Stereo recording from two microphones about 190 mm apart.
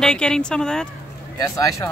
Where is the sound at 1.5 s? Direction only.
15° left (ahead or behind).